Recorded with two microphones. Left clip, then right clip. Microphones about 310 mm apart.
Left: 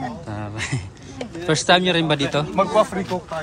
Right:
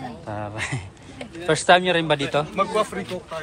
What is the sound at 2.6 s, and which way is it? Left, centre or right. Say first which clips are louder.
Speech: left 9 dB; left.